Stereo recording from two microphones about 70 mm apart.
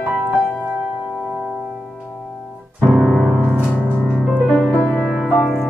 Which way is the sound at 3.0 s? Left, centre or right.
Centre.